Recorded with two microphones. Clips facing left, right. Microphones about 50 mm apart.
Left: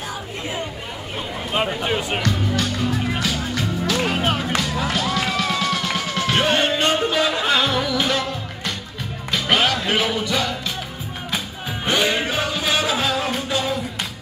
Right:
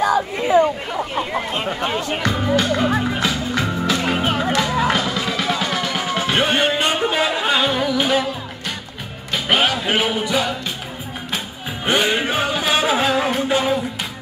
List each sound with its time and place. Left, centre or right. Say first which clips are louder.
1.9 s speech: even; centre
2.3 s music: right 5 dB; right; by 10.5 s centre
11.8 s music: right 2 dB; right